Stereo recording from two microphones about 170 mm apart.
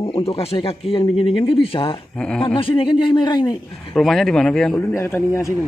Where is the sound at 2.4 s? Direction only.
30° left (ahead or behind).